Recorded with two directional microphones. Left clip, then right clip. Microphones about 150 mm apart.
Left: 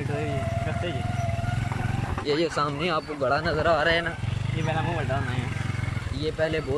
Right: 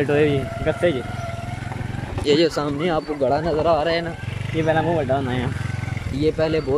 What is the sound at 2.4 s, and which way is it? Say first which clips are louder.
Speech: right 4 dB; 35° right (ahead or behind).